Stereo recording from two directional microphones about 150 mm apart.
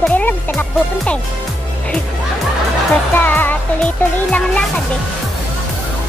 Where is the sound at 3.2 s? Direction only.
10° left (ahead or behind).